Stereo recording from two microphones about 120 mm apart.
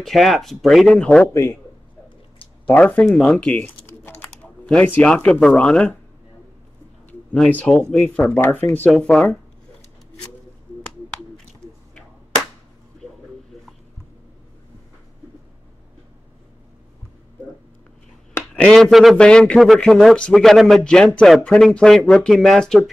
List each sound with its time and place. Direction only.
0.0 s a man's voice: centre (ahead or behind)
1.3 s a man's voice: 20° left (ahead or behind)
2.6 s speech: 15° left (ahead or behind)
7.3 s speech: 10° left (ahead or behind)
8.9 s a man's voice: 5° left (ahead or behind)
18.3 s a man's voice: 5° left (ahead or behind)